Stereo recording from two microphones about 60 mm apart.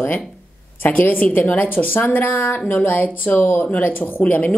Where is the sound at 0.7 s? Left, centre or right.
Left.